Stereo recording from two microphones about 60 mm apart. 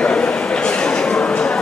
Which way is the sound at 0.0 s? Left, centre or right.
Centre.